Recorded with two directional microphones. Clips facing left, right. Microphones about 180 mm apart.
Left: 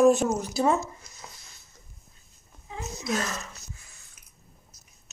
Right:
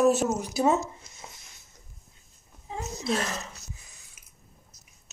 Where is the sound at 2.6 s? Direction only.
30° right (ahead or behind).